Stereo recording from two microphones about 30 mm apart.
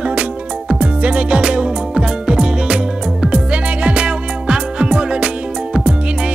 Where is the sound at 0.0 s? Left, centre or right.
Right.